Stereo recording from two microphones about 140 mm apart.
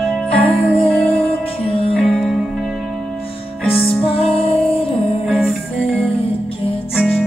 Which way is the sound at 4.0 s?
40° left (ahead or behind).